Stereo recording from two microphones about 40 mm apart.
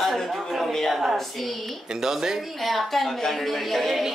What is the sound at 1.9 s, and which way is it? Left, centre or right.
A woman's voice, centre.